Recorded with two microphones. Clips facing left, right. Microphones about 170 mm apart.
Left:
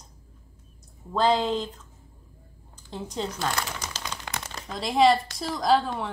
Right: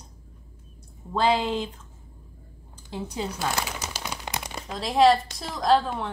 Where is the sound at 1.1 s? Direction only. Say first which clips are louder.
Even; 10° right (ahead or behind).